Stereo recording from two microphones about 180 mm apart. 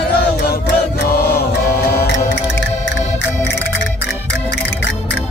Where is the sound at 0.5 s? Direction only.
60° left (ahead or behind).